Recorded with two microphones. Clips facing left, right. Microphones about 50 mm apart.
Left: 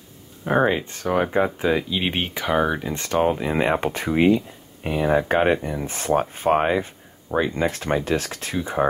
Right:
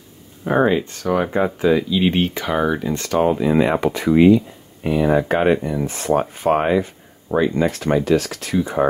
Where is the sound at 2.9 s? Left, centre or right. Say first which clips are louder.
Right 2 dB; left.